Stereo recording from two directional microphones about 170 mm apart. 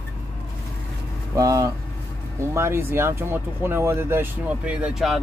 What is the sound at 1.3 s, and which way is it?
Speech, 20° right (ahead or behind).